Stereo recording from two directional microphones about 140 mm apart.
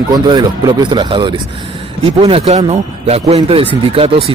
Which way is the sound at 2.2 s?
45° right (ahead or behind).